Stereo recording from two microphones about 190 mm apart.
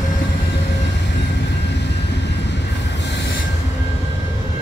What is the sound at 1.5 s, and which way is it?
Vehicle, 65° left (ahead or behind).